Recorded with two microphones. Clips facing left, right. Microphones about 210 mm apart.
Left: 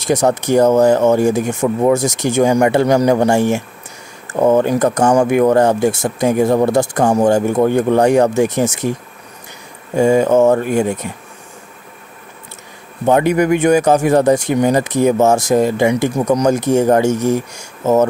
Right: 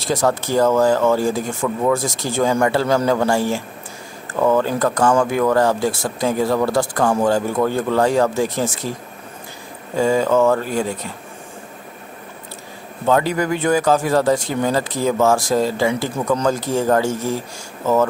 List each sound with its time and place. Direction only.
0.0 s speech: 20° left (ahead or behind)
9.9 s speech: 25° left (ahead or behind)
13.0 s speech: 20° left (ahead or behind)